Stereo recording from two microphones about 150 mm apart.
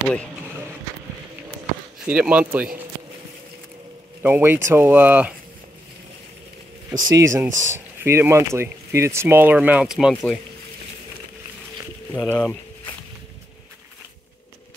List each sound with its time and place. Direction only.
2.0 s speech: 10° right (ahead or behind)
4.2 s speech: 15° right (ahead or behind)
6.9 s speech: 25° right (ahead or behind); by 10.4 s centre (ahead or behind)
12.1 s speech: 15° left (ahead or behind)